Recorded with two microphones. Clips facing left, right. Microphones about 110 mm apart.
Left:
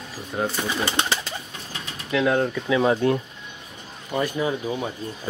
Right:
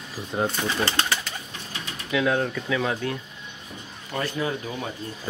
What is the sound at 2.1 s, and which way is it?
Speech, 5° left (ahead or behind).